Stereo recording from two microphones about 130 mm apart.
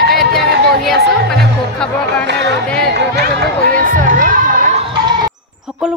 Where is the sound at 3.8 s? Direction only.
85° right.